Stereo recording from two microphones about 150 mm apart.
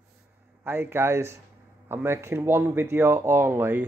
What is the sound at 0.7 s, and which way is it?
Speech, 15° right (ahead or behind).